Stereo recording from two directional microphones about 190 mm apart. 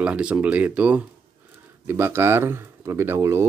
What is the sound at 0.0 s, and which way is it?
Speech, 5° right (ahead or behind).